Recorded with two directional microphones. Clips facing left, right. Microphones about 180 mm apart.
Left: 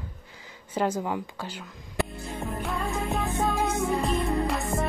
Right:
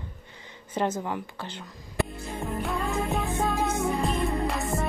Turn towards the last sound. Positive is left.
turn(degrees=0)  # may be behind; listen again after turning